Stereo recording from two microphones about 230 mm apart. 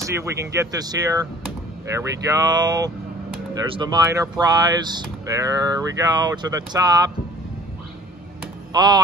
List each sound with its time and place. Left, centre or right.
0.0 s speech: centre
8.7 s speech: centre